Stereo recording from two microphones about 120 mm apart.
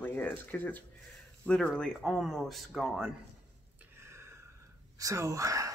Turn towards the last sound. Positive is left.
turn(degrees=-25)  # may be behind; listen again after turning